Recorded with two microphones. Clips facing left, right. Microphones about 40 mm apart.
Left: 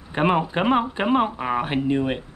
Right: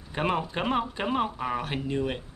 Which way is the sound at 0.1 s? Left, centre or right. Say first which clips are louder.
Left 7 dB; left.